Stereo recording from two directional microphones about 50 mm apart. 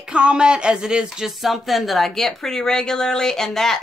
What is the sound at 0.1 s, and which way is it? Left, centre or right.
A woman's voice, right.